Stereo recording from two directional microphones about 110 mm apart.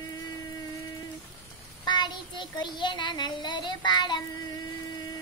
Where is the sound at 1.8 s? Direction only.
40° left (ahead or behind).